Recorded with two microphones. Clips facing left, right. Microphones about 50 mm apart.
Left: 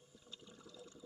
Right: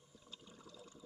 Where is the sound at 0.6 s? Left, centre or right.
Right.